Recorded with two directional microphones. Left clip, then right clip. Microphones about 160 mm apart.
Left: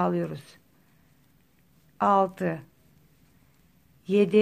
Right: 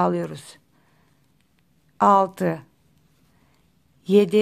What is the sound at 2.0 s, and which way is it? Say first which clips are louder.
Speech: right 5 dB; 35° right (ahead or behind).